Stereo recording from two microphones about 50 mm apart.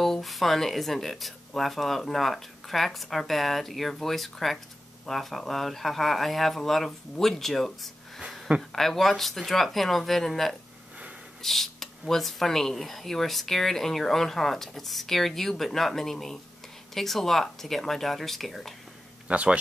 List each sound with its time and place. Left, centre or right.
0.0 s speech: centre
19.2 s speech: right